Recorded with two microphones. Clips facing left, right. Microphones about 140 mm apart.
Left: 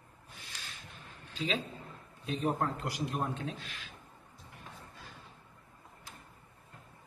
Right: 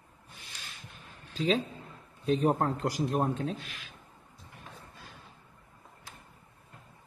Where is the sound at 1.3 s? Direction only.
40° right (ahead or behind).